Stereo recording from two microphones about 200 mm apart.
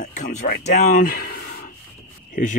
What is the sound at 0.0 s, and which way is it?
Speech, 40° left (ahead or behind).